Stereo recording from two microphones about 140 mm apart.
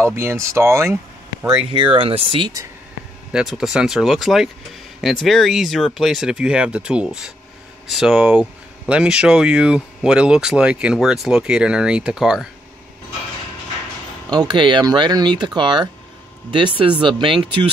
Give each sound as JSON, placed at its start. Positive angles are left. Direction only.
{"t": 0.0, "sound": "speech", "side_deg": -20}
{"t": 1.4, "sound": "speech", "side_deg": -5}
{"t": 1.7, "sound": "speech", "side_deg": -35}
{"t": 3.3, "sound": "speech", "side_deg": 0}
{"t": 14.3, "sound": "speech", "side_deg": -30}